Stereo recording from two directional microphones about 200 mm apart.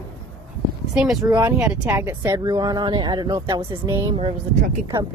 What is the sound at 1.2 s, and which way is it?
Speech, 15° right (ahead or behind).